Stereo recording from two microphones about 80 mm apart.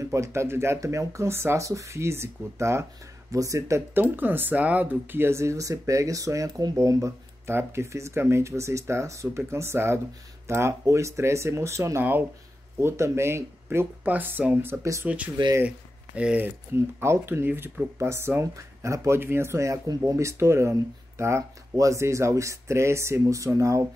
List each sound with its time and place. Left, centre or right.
0.0 s speech: right
3.9 s speech: right
14.8 s speech: right
15.0 s speech: centre
16.4 s speech: right